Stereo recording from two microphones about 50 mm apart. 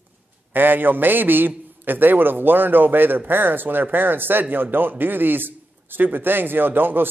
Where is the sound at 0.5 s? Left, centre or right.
Right.